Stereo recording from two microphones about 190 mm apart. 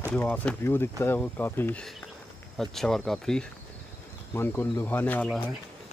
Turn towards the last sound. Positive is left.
turn(degrees=10)  # may be behind; listen again after turning